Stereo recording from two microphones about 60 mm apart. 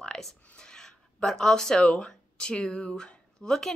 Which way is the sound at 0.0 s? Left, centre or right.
Centre.